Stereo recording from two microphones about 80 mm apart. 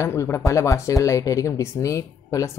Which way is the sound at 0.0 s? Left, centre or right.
Left.